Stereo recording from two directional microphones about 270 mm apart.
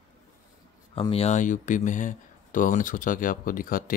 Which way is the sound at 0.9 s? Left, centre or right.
Left.